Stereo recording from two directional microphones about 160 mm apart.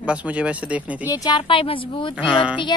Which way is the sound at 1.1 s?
25° left (ahead or behind).